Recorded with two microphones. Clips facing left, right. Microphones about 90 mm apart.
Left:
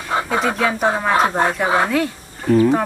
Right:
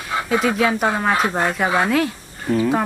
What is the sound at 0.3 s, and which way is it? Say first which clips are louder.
Speech: right 3 dB; centre (ahead or behind).